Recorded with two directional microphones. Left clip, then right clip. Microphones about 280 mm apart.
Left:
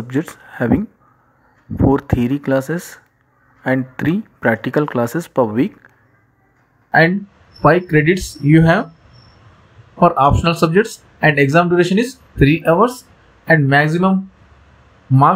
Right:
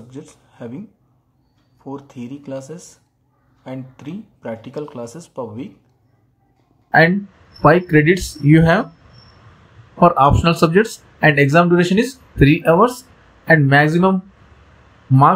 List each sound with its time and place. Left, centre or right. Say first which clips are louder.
0.1 s speech: left 17 dB; left
1.9 s speech: left 15 dB; left
6.9 s speech: even; centre